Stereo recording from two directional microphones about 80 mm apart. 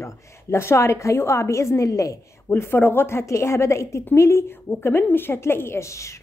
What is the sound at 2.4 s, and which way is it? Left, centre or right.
A woman's voice, left.